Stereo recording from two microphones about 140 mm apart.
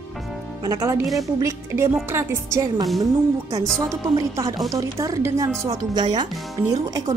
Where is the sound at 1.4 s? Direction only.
20° right (ahead or behind).